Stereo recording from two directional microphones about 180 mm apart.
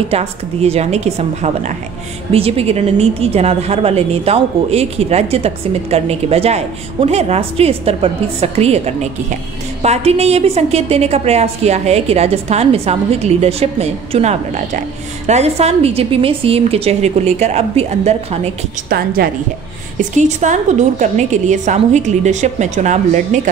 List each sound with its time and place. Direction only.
0.1 s a woman's voice: 35° right (ahead or behind)
18.9 s a woman's voice: 55° right (ahead or behind)
20.2 s a woman's voice: 40° right (ahead or behind)